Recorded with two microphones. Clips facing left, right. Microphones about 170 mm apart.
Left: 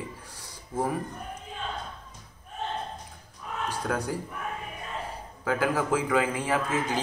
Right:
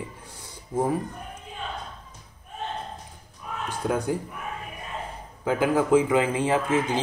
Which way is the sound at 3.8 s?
20° right (ahead or behind).